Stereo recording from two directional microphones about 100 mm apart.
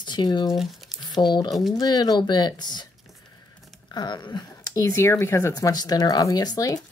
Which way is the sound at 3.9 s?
45° left (ahead or behind).